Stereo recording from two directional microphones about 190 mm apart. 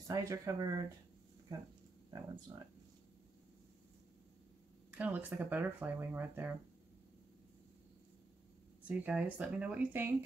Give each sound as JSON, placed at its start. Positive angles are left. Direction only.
{"t": 0.1, "sound": "speech", "side_deg": -15}
{"t": 2.5, "sound": "speech", "side_deg": -25}
{"t": 4.9, "sound": "speech", "side_deg": -10}
{"t": 8.8, "sound": "speech", "side_deg": -10}